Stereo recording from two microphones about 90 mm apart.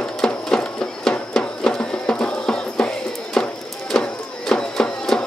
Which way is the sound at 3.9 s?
10° left (ahead or behind).